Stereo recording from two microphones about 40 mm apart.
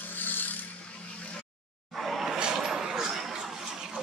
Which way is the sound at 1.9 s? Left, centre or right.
Centre.